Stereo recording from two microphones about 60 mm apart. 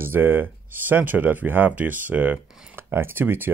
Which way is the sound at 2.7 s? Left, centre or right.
Right.